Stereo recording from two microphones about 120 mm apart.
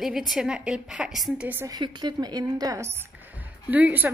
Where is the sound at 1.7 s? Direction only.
40° right (ahead or behind); by 4.1 s 15° right (ahead or behind).